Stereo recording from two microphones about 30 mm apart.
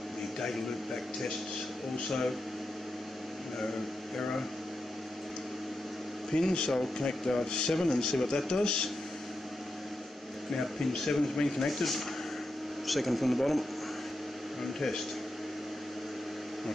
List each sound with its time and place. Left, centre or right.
2.0 s speech: centre
6.3 s speech: left
10.5 s speech: left; by 13.7 s centre
14.6 s speech: centre